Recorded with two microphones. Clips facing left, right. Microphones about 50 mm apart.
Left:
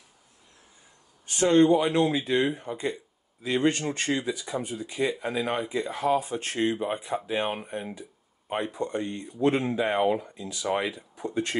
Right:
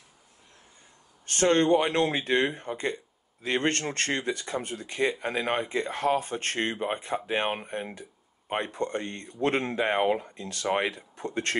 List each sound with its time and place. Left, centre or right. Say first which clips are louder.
1.2 s speech: left 3 dB; right